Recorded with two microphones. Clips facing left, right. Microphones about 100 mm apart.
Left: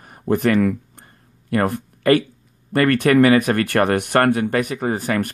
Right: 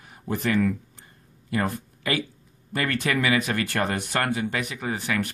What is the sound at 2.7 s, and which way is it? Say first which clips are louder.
Speech: left 11 dB; 55° left (ahead or behind).